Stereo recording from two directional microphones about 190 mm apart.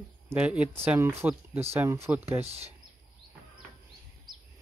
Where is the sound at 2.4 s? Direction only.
35° right (ahead or behind).